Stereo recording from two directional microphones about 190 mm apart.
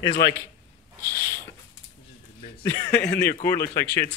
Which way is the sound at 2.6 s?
20° left (ahead or behind).